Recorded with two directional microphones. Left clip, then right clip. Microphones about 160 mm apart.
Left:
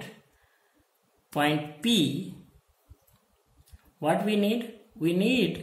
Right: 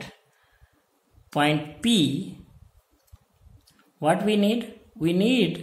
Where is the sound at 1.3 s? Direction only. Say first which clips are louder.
Right 3 dB; 35° right (ahead or behind).